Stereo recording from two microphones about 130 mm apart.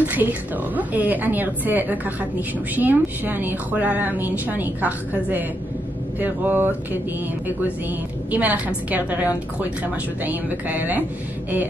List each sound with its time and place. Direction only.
0.0 s a woman's voice: 15° right (ahead or behind)
8.3 s a woman's voice: 10° right (ahead or behind)